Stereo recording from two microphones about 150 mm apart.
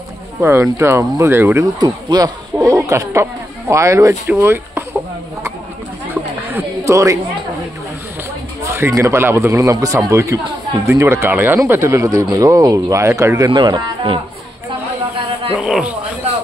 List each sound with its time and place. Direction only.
0.4 s speech: 15° right (ahead or behind)
1.8 s speech: 25° right (ahead or behind)
6.5 s a sound: 20° right (ahead or behind)
8.6 s speech: 20° right (ahead or behind)
13.5 s speech: 35° right (ahead or behind)
15.5 s speech: 5° right (ahead or behind)